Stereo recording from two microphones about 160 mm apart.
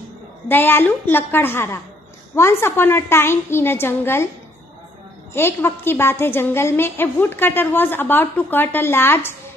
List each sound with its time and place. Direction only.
0.5 s a woman's voice: 10° left (ahead or behind)
5.3 s a woman's voice: 15° left (ahead or behind)